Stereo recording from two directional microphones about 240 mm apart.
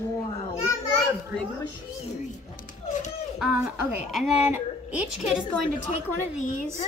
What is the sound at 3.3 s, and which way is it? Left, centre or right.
A woman's voice, centre.